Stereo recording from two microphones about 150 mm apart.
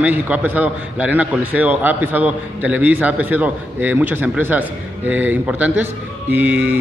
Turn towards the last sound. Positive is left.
turn(degrees=-10)  # may be behind; listen again after turning